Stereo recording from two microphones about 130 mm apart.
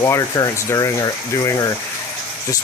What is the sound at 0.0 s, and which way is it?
Speech, 25° left (ahead or behind).